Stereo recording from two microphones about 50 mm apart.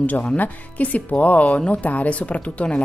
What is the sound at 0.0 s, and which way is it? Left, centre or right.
Speech, left.